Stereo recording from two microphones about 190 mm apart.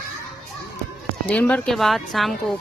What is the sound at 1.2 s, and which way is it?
Speech, 5° left (ahead or behind).